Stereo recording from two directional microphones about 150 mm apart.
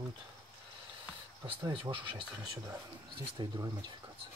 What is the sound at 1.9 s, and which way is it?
Speech, 35° right (ahead or behind).